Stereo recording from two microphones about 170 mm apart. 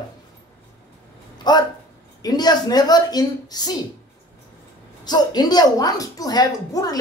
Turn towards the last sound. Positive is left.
turn(degrees=20)  # may be behind; listen again after turning